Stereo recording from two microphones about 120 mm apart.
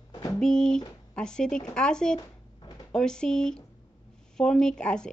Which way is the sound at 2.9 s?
5° left (ahead or behind).